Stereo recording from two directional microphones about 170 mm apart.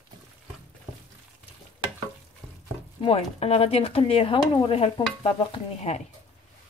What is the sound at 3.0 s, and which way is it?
Speech, 35° left (ahead or behind).